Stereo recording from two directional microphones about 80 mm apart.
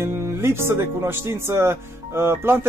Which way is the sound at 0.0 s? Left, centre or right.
Right.